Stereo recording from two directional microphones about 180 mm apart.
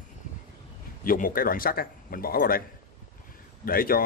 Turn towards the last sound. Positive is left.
turn(degrees=55)  # may be behind; listen again after turning